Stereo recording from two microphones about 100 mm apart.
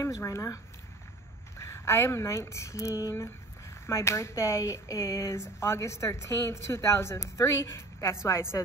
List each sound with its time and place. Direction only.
0.0 s speech: 30° left (ahead or behind)
1.6 s speech: 30° left (ahead or behind)